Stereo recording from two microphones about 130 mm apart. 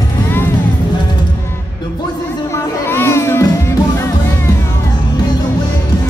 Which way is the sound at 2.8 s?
15° left (ahead or behind).